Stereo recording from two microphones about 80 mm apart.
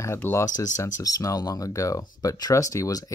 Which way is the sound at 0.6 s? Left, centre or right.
Left.